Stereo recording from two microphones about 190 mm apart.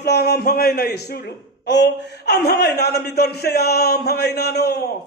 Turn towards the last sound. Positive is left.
turn(degrees=60)  # may be behind; listen again after turning